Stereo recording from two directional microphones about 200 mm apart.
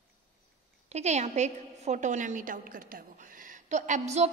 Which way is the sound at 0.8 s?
35° right (ahead or behind).